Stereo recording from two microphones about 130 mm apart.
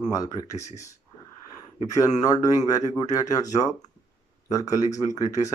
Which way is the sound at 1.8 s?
30° left (ahead or behind).